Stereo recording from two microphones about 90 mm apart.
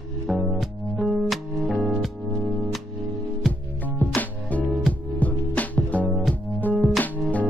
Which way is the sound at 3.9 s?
20° left (ahead or behind).